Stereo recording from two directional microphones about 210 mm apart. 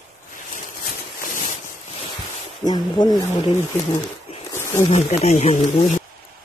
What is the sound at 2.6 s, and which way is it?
Speech, 20° left (ahead or behind).